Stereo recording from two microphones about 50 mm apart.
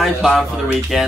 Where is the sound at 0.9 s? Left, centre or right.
Centre.